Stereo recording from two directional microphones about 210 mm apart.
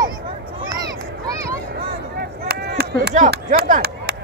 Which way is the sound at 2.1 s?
50° right (ahead or behind).